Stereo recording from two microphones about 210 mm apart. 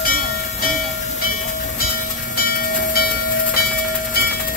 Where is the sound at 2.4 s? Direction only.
45° left (ahead or behind).